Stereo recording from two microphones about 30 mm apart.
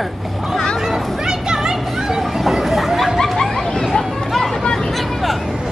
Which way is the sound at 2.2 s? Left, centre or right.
Centre.